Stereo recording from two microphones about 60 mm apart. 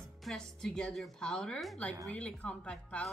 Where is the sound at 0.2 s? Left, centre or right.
Centre.